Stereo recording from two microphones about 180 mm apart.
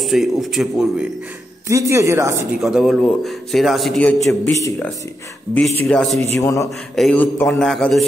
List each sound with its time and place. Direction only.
0.0 s a man's voice: centre (ahead or behind)
1.7 s speech: 15° right (ahead or behind)
2.6 s a man's voice: centre (ahead or behind)
4.3 s a man's voice: 15° left (ahead or behind)
6.3 s a man's voice: 15° left (ahead or behind)